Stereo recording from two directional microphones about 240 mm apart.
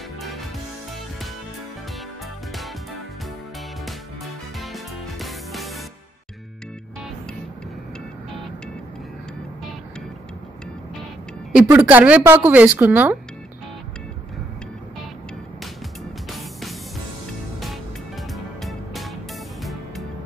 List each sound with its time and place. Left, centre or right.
4.6 s music: centre
11.5 s speech: centre
16.3 s music: centre
18.3 s music: centre